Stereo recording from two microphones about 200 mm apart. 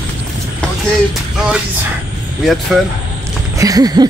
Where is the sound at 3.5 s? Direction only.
15° right (ahead or behind).